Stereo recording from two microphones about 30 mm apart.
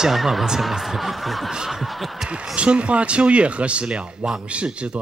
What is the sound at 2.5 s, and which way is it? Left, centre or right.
Speech, right.